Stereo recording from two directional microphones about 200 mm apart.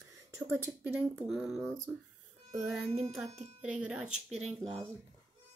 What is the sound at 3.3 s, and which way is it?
Speech, 30° right (ahead or behind).